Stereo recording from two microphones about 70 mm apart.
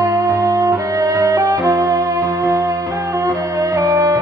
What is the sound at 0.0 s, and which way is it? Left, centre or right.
Music, right.